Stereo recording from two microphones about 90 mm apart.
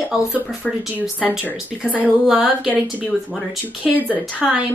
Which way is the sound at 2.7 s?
15° left (ahead or behind).